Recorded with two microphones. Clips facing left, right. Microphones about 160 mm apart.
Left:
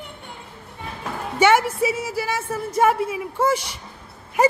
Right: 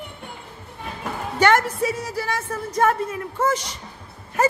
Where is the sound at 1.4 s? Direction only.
10° left (ahead or behind).